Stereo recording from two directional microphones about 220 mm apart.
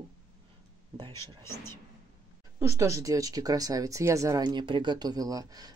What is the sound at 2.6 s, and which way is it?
Speech, 15° right (ahead or behind).